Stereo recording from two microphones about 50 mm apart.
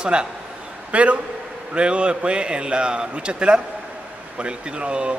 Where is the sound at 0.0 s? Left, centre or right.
Centre.